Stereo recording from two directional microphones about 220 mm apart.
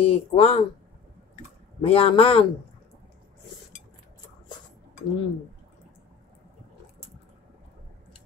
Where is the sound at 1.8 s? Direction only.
25° left (ahead or behind).